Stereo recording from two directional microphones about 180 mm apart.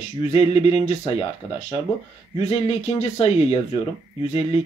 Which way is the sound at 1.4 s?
20° left (ahead or behind).